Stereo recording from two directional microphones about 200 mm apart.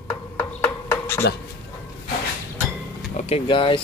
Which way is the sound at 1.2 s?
60° left (ahead or behind).